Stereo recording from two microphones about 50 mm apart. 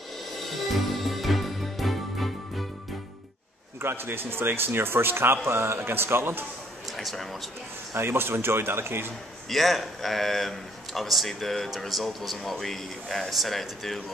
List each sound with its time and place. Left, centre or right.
0.4 s music: centre
3.8 s speech: right
6.9 s speech: centre
7.9 s a man's voice: right
9.5 s a man's voice: centre